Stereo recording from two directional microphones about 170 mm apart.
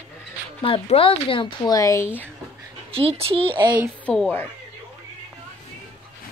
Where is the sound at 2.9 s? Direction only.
35° right (ahead or behind).